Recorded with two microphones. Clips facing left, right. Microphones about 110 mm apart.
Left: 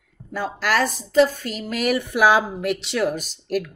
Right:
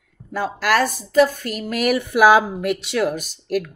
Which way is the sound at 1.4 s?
55° right (ahead or behind).